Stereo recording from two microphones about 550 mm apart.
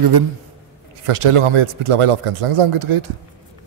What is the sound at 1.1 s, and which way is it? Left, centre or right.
Speech, right.